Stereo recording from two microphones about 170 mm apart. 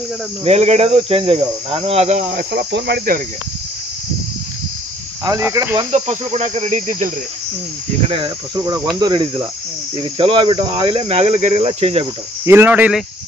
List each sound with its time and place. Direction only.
0.4 s cricket: 40° right (ahead or behind)
2.3 s cricket: 75° right (ahead or behind)
5.4 s cricket: 15° right (ahead or behind)
5.9 s cricket: 40° right (ahead or behind)
8.1 s cricket: 25° right (ahead or behind)
12.4 s speech: 10° right (ahead or behind)